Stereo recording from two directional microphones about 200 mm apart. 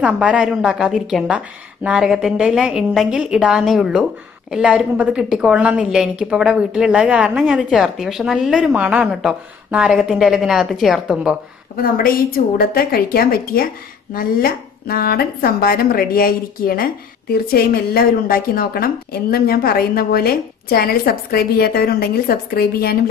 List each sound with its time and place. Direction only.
0.0 s a woman's voice: 5° right (ahead or behind)
11.7 s a woman's voice: 45° left (ahead or behind)